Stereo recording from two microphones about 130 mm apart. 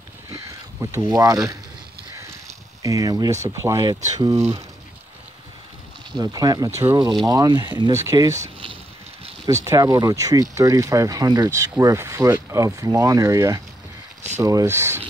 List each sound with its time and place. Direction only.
0.3 s a sound: 20° right (ahead or behind)
1.0 s speech: 30° right (ahead or behind)
2.8 s speech: 25° right (ahead or behind)
6.1 s speech: 30° right (ahead or behind)
7.9 s speech: 20° right (ahead or behind)
9.5 s speech: 25° right (ahead or behind)